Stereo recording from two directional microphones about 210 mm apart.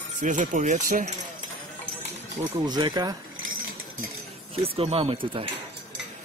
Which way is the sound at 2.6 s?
20° right (ahead or behind).